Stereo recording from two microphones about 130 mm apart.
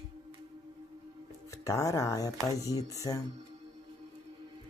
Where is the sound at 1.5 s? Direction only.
25° left (ahead or behind).